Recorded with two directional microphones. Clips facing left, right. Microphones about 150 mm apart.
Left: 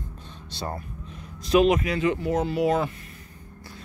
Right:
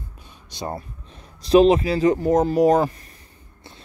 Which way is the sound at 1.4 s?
30° right (ahead or behind).